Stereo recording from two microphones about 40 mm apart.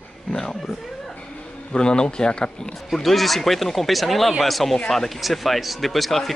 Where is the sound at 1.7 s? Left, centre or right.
Left.